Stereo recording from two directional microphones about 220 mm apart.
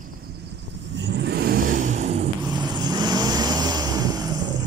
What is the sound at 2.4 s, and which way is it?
Vehicle, 20° right (ahead or behind).